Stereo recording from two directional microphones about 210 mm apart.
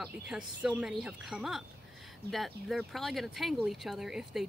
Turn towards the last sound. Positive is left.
turn(degrees=0)  # may be behind; listen again after turning